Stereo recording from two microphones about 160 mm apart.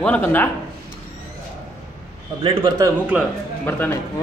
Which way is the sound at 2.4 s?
30° right (ahead or behind).